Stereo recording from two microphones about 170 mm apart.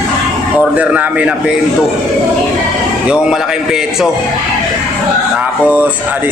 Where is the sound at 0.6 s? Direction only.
5° right (ahead or behind).